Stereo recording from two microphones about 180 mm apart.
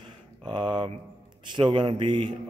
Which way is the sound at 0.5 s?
25° right (ahead or behind).